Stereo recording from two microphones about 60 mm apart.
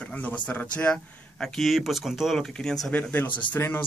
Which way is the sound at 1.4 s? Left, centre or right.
Centre.